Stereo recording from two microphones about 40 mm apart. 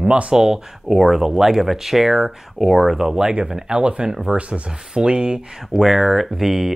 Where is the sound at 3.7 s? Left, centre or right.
Right.